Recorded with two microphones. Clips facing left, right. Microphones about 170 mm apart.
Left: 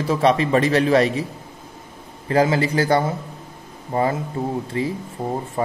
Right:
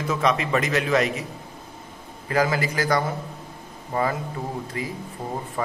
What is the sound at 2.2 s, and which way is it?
Speech, 30° left (ahead or behind).